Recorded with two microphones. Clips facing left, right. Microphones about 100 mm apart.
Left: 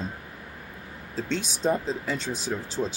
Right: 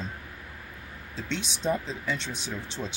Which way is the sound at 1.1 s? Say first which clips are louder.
Left 4 dB; 45° left (ahead or behind).